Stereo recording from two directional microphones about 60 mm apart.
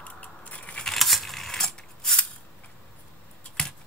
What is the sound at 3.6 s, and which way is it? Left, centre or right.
Computer keyboard, centre.